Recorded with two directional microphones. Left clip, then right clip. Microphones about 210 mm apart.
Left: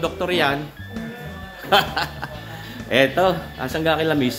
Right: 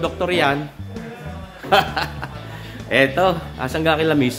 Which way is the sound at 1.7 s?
10° right (ahead or behind).